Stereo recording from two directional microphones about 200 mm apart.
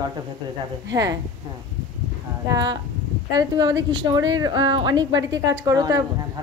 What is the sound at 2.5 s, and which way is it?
A woman's voice, 20° right (ahead or behind).